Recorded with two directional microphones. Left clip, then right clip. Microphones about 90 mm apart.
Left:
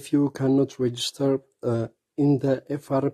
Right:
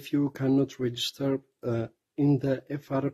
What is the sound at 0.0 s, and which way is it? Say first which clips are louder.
Speech: left 5 dB; 35° left (ahead or behind).